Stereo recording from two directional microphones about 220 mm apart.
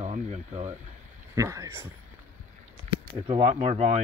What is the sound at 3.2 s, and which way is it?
Speech, 30° right (ahead or behind).